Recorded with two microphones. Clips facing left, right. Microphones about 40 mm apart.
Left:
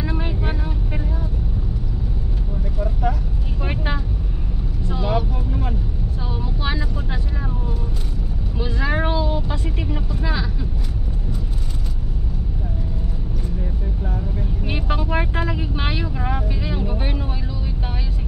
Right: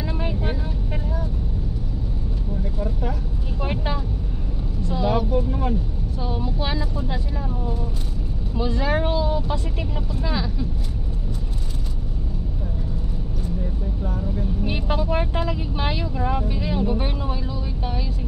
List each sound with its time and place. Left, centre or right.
0.0 s vehicle: centre
4.8 s vehicle: centre
5.3 s vehicle: centre
6.6 s vehicle: centre
8.5 s vehicle: centre
10.2 s vehicle: centre
14.7 s vehicle: left